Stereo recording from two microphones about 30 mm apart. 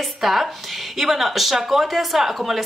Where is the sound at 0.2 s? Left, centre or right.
Centre.